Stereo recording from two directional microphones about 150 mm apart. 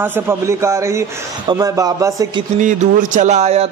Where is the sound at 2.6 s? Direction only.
60° right (ahead or behind).